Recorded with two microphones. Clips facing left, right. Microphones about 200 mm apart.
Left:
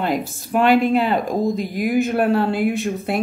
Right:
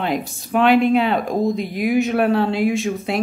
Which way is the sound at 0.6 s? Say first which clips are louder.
Right 1 dB; 45° left (ahead or behind).